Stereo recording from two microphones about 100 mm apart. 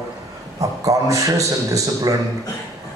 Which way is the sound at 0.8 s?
35° right (ahead or behind).